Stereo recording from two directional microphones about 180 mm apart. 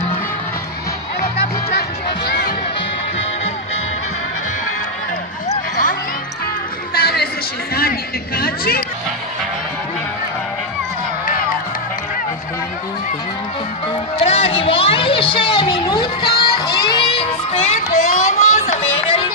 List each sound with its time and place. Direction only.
1.2 s music: 55° left (ahead or behind)
6.9 s chatter: 60° left (ahead or behind)
7.7 s speech: 55° left (ahead or behind)
14.2 s a woman's voice: 35° left (ahead or behind)
16.3 s music: 25° left (ahead or behind)